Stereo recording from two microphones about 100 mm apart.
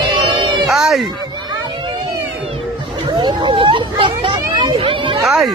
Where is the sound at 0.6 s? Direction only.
Centre (ahead or behind).